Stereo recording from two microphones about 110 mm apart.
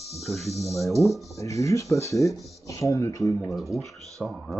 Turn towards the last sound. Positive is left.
turn(degrees=0)  # may be behind; listen again after turning